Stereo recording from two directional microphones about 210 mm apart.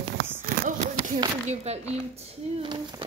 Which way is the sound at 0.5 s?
40° right (ahead or behind).